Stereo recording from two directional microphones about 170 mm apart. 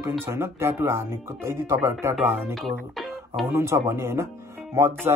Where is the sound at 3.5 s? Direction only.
15° right (ahead or behind).